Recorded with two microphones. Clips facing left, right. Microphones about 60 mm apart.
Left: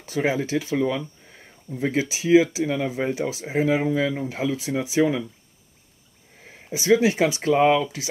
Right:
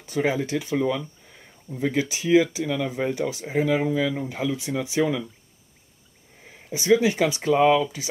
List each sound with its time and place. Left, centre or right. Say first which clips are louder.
0.2 s speech: left 1 dB; left
2.0 s speech: left 2 dB; centre
4.4 s speech: left 2 dB; left
6.4 s speech: left 2 dB; left